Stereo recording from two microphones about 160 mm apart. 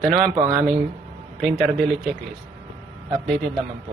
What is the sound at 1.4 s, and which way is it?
Speech, centre (ahead or behind).